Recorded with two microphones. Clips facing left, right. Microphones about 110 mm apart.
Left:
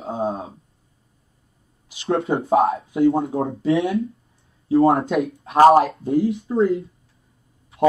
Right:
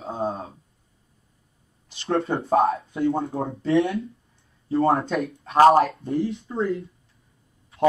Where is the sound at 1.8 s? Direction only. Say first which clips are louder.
Left 3 dB; 5° left (ahead or behind).